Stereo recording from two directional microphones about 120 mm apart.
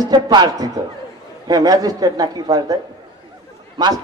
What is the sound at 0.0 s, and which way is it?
A man's voice, 35° right (ahead or behind).